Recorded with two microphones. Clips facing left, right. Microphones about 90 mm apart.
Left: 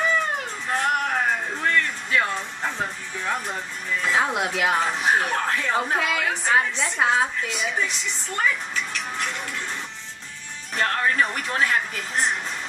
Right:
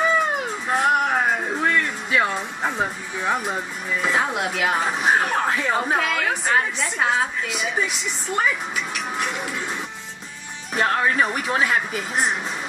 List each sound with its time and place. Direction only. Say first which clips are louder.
0.7 s music: right 4 dB; 15° right (ahead or behind)
4.1 s a woman's voice: left 1 dB; centre (ahead or behind)
5.3 s a woman's voice: right 2 dB; 15° right (ahead or behind)
10.7 s speech: right 3 dB; 15° right (ahead or behind)